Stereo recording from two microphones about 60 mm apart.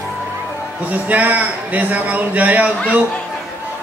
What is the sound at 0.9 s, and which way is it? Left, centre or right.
A man's voice, right.